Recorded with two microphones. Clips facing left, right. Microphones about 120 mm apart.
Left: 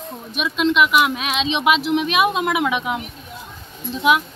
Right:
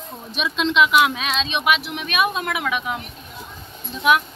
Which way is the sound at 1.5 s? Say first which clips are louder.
Left 6 dB; 25° left (ahead or behind).